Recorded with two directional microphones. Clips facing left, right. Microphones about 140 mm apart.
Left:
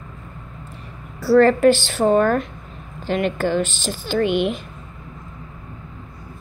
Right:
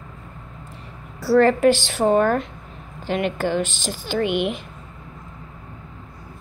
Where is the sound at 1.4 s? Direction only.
15° right (ahead or behind).